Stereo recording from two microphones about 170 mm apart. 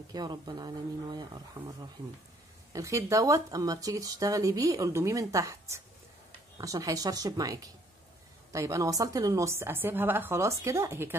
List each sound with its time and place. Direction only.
0.1 s a woman's voice: 25° right (ahead or behind)